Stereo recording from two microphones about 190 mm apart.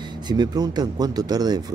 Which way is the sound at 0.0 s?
25° right (ahead or behind).